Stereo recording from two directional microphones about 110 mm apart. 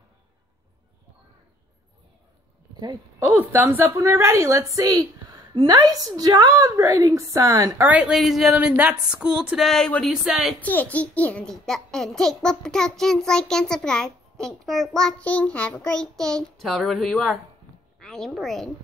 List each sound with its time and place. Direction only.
3.2 s a woman's voice: 20° right (ahead or behind)
5.5 s a woman's voice: 50° right (ahead or behind)
5.8 s a woman's voice: 35° right (ahead or behind)
7.8 s a sound: 15° right (ahead or behind)
8.1 s a child's voice: centre (ahead or behind)
8.5 s a sound: 10° right (ahead or behind)
9.6 s a child's voice: 5° left (ahead or behind)
10.2 s a child's voice: 5° right (ahead or behind)
10.6 s a child's voice: 15° left (ahead or behind)